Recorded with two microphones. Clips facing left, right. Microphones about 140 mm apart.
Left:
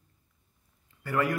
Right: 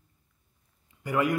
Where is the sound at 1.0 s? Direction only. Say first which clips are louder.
Right 2 dB; 15° right (ahead or behind).